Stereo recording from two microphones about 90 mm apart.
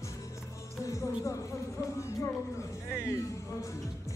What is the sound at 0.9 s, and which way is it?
Music, 35° left (ahead or behind).